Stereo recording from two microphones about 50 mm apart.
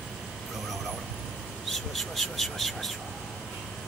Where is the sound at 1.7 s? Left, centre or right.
Centre.